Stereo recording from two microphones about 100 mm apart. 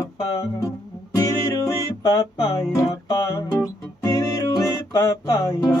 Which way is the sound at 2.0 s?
40° left (ahead or behind).